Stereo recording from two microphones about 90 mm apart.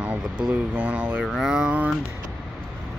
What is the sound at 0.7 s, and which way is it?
Speech, 15° right (ahead or behind).